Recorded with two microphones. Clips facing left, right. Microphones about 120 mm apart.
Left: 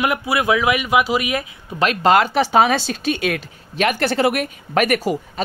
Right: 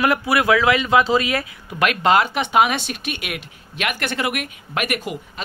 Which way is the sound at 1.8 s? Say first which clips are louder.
Left 2 dB; 35° left (ahead or behind).